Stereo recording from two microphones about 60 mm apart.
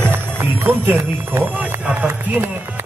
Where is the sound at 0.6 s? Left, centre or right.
Right.